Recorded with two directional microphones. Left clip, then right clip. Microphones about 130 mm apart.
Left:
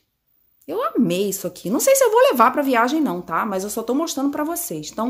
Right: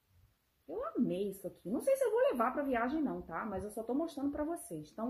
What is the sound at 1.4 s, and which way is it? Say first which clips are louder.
Speech: left 16 dB; 50° left (ahead or behind).